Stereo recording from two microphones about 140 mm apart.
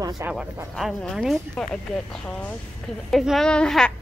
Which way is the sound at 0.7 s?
Centre (ahead or behind).